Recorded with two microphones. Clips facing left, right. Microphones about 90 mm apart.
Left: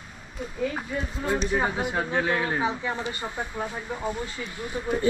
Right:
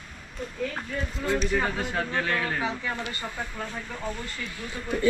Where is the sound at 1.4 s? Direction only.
20° left (ahead or behind).